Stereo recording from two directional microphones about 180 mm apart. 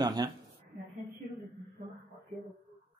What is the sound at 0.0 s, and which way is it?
Speech, 20° right (ahead or behind).